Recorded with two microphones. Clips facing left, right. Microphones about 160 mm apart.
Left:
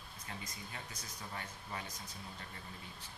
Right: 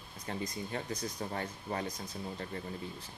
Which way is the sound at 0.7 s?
40° right (ahead or behind).